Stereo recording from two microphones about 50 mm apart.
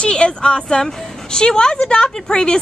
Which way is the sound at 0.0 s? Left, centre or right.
Centre.